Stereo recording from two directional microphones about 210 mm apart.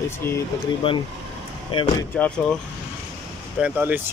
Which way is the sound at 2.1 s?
5° left (ahead or behind).